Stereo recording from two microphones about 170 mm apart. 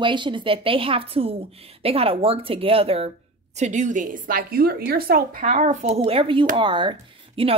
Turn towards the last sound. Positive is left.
turn(degrees=-30)  # may be behind; listen again after turning